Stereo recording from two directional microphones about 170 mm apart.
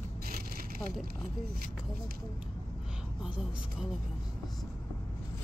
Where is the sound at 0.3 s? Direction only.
60° right (ahead or behind).